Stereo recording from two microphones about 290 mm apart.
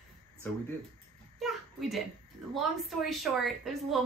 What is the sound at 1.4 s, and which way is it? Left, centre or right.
A woman's voice, centre.